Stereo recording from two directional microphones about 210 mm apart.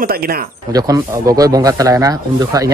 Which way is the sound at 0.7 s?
15° right (ahead or behind).